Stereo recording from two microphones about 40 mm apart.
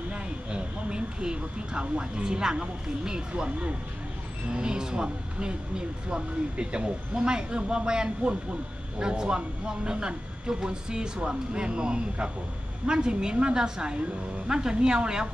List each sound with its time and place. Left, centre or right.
0.1 s speech: right